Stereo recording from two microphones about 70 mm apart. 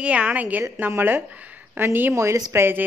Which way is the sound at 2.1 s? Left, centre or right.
Right.